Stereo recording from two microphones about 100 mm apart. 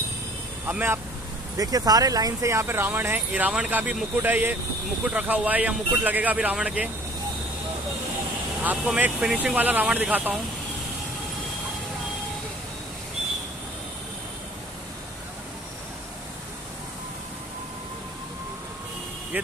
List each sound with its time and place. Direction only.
0.7 s speech: 20° right (ahead or behind)
1.6 s speech: 40° right (ahead or behind); by 6.9 s 10° right (ahead or behind)
8.8 s speech: 10° right (ahead or behind)
19.3 s speech: 15° right (ahead or behind)